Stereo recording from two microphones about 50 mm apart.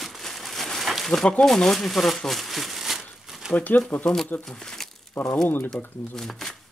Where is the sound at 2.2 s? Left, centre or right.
Centre.